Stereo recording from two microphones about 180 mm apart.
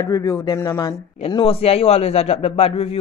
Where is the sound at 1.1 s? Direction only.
30° left (ahead or behind).